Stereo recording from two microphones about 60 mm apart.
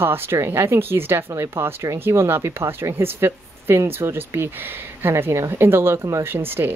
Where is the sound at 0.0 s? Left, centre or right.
Right.